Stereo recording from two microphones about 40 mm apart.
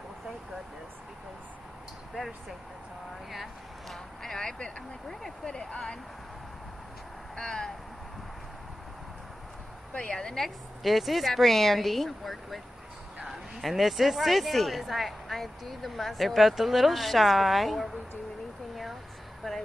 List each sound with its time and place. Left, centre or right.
3.9 s a sound: centre
5.5 s speech: centre
7.3 s speech: centre
10.1 s speech: centre
10.4 s speech: centre
19.4 s speech: centre